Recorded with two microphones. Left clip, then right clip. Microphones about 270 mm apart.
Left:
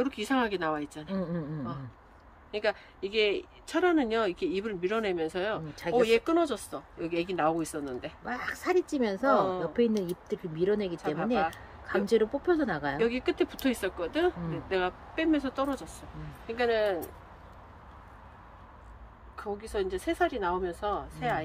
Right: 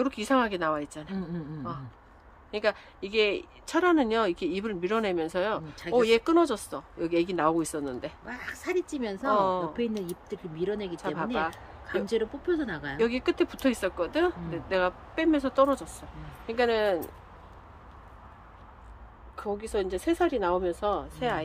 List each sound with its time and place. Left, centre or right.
0.0 s speech: centre
1.1 s speech: centre
2.5 s speech: centre
8.3 s speech: centre
9.4 s speech: right
9.8 s speech: centre
13.0 s speech: centre
19.3 s speech: right